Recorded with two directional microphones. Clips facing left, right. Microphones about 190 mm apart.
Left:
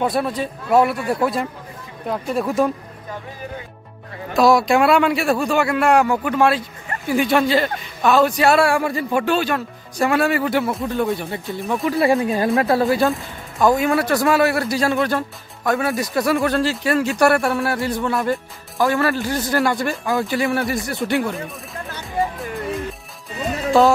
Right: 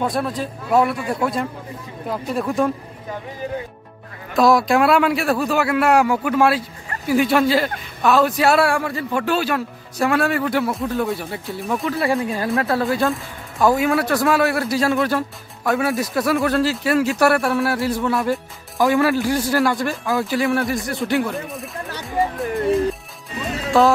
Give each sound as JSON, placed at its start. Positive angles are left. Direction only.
{"t": 0.0, "sound": "speech", "side_deg": 0}
{"t": 4.3, "sound": "speech", "side_deg": 0}
{"t": 8.8, "sound": "speech", "side_deg": 15}
{"t": 9.2, "sound": "speech", "side_deg": -5}
{"t": 12.3, "sound": "speech", "side_deg": 20}
{"t": 13.0, "sound": "speech", "side_deg": 0}
{"t": 18.8, "sound": "speech", "side_deg": -15}
{"t": 23.7, "sound": "speech", "side_deg": 0}